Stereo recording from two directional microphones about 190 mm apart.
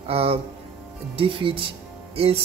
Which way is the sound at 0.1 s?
30° right (ahead or behind).